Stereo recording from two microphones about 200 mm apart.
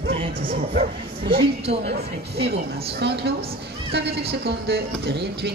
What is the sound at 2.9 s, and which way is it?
Speech, 55° right (ahead or behind).